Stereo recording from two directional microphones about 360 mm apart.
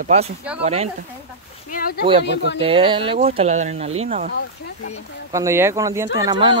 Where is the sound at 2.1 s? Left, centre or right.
Centre.